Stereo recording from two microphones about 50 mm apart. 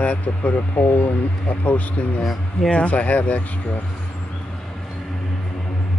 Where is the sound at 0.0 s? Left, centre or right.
Left.